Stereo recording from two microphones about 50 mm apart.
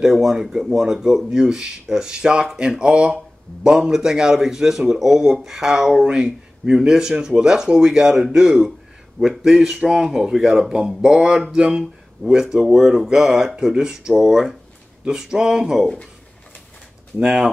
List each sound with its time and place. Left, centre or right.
0.0 s speech: centre
17.2 s speech: centre